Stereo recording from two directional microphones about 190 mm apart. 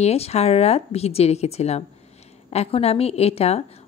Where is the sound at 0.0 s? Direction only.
35° left (ahead or behind).